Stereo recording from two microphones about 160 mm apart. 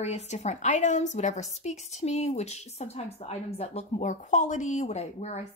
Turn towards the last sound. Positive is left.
turn(degrees=45)  # may be behind; listen again after turning